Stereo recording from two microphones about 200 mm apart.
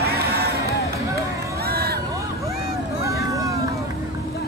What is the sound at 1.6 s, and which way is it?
Vehicle, 50° right (ahead or behind).